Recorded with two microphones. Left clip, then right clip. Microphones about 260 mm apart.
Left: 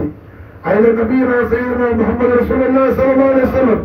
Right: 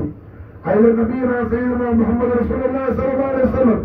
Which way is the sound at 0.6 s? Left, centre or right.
Left.